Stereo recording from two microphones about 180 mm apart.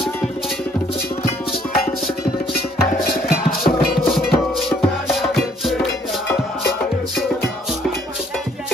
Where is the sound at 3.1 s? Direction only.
55° left (ahead or behind).